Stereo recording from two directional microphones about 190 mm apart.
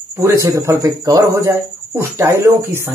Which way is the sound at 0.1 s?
15° right (ahead or behind).